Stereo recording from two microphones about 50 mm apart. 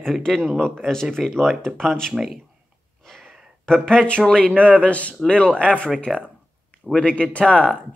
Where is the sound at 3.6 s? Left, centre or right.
Centre.